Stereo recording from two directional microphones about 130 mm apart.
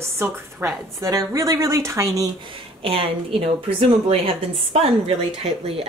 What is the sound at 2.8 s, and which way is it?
Speech, 45° right (ahead or behind).